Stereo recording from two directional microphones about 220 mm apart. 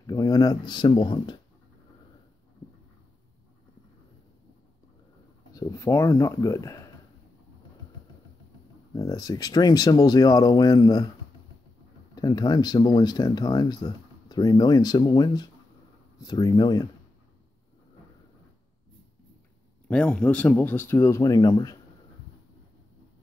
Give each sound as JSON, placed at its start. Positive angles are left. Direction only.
{"t": 0.0, "sound": "speech", "side_deg": 15}
{"t": 5.5, "sound": "speech", "side_deg": 15}
{"t": 8.9, "sound": "speech", "side_deg": 15}
{"t": 12.2, "sound": "speech", "side_deg": 20}
{"t": 19.9, "sound": "speech", "side_deg": 5}